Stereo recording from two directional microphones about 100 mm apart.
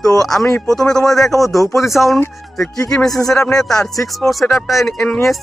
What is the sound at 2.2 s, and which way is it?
Speech, 30° left (ahead or behind).